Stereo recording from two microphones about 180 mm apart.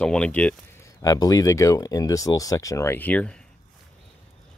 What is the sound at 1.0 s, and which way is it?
Speech, 20° left (ahead or behind).